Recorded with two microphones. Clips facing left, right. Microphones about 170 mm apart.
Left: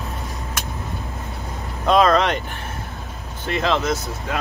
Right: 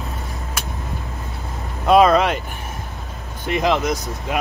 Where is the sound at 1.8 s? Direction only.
10° right (ahead or behind).